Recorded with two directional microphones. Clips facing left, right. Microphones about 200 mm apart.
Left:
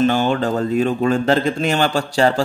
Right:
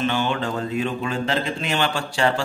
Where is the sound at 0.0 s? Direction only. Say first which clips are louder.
Left 6 dB; 40° left (ahead or behind).